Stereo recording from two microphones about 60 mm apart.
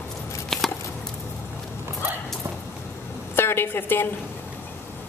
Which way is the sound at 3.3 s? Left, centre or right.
Left.